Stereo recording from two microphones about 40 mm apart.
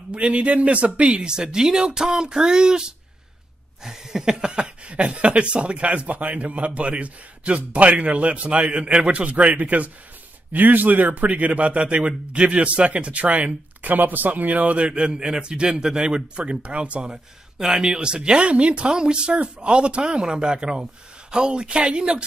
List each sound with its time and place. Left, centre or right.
0.1 s speech: right
13.9 s speech: right
17.1 s speech: centre